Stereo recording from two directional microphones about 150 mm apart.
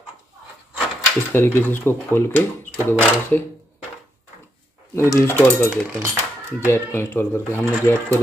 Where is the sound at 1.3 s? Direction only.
15° left (ahead or behind).